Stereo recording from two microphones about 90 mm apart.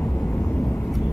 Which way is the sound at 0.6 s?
Centre (ahead or behind).